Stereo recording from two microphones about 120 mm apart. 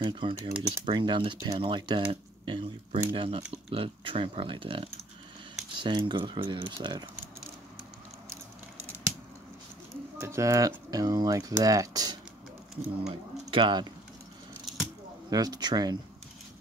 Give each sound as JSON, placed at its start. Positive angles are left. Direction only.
{"t": 0.0, "sound": "speech", "side_deg": -45}
{"t": 10.2, "sound": "speech", "side_deg": -25}
{"t": 13.0, "sound": "speech", "side_deg": -45}
{"t": 15.2, "sound": "speech", "side_deg": -30}